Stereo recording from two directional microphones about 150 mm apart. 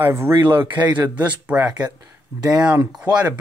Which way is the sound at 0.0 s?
15° right (ahead or behind).